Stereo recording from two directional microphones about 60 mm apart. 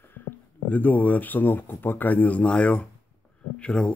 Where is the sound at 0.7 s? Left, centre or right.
Left.